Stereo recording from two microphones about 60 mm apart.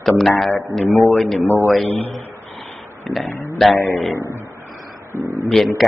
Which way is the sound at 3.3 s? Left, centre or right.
Left.